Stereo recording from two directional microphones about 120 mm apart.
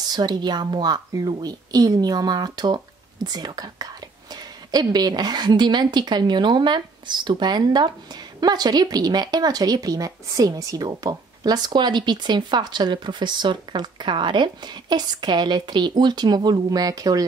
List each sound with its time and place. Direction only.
0.0 s speech: 35° right (ahead or behind)